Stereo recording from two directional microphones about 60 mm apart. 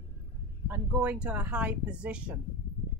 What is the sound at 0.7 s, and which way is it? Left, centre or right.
Speech, right.